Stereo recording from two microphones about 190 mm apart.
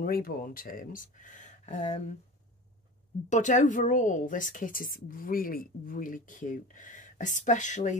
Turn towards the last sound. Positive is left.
turn(degrees=40)  # may be behind; listen again after turning